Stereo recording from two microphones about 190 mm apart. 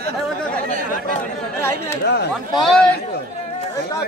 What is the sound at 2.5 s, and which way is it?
Speech, centre (ahead or behind).